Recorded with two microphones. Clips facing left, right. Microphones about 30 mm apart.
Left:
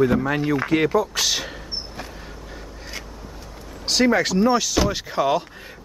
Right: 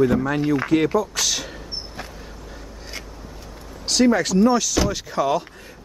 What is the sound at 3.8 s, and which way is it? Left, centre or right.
Speech, centre.